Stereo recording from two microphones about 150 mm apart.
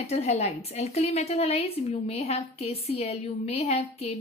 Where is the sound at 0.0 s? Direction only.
45° left (ahead or behind).